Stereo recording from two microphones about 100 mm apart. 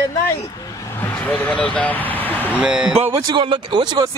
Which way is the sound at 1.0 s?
15° left (ahead or behind).